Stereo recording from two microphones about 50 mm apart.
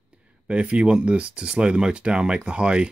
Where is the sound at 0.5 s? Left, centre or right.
Right.